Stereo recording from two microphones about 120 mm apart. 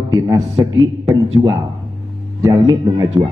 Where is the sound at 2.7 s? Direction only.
30° right (ahead or behind).